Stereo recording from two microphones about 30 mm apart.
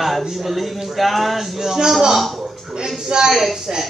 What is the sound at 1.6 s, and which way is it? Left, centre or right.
Speech, centre.